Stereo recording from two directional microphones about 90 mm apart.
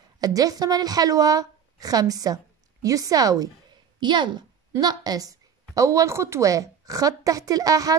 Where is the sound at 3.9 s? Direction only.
55° right (ahead or behind).